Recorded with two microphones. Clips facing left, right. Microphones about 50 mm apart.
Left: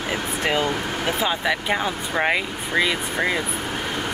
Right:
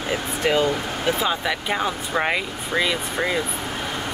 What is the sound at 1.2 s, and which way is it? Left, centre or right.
Speech, centre.